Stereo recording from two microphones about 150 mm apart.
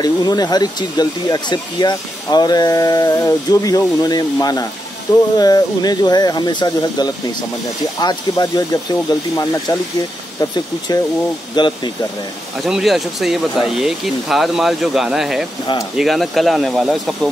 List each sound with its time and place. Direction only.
0.0 s speech: 25° left (ahead or behind)
11.5 s speech: 30° left (ahead or behind)
12.6 s speech: centre (ahead or behind)
15.6 s speech: 25° left (ahead or behind)
16.0 s speech: centre (ahead or behind)